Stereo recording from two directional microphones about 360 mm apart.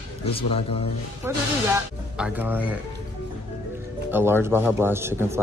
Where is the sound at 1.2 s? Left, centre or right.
Centre.